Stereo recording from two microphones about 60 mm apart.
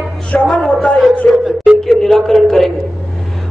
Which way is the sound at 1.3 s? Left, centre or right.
Centre.